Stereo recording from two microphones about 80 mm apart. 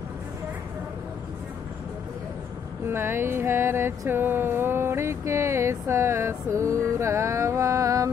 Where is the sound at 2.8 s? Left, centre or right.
Right.